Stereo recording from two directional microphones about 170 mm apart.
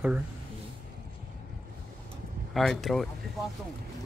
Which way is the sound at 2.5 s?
Centre (ahead or behind).